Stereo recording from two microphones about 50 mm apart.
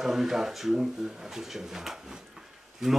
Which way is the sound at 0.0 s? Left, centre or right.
Centre.